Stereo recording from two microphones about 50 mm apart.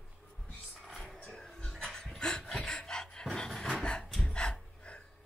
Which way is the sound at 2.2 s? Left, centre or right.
Centre.